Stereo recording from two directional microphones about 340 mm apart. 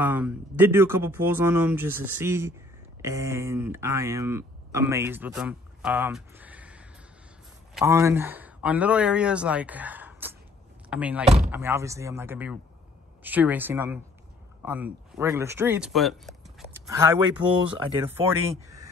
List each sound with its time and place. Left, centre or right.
0.0 s speech: centre
11.2 s speech: centre
11.5 s speech: centre